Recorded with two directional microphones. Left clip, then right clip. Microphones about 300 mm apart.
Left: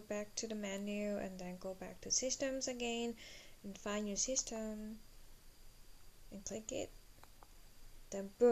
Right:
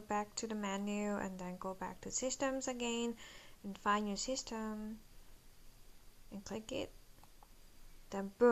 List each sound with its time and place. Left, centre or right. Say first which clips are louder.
0.1 s a woman's voice: right 4 dB; centre
2.0 s speech: left 5 dB; right
2.2 s a woman's voice: right 1 dB; centre
6.3 s a woman's voice: right 1 dB; centre
8.1 s a woman's voice: right 1 dB; centre